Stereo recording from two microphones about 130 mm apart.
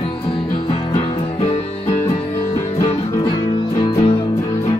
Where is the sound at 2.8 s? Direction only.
40° left (ahead or behind).